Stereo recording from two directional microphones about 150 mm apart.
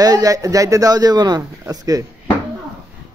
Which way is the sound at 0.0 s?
25° right (ahead or behind).